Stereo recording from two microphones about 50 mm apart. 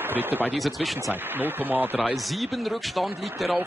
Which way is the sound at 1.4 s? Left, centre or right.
Right.